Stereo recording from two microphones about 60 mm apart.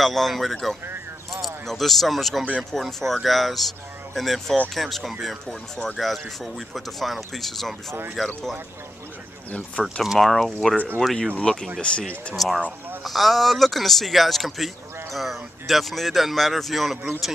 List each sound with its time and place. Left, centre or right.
0.0 s speech: centre
9.5 s speech: left
10.0 s speech: centre
12.4 s speech: centre